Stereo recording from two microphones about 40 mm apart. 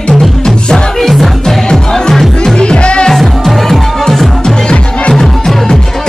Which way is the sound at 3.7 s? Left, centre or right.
Centre.